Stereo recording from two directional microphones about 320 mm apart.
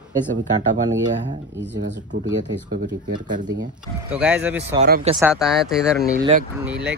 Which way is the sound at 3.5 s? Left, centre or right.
Centre.